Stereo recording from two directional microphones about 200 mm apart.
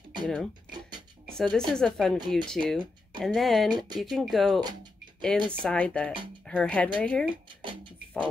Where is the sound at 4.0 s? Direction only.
Centre (ahead or behind).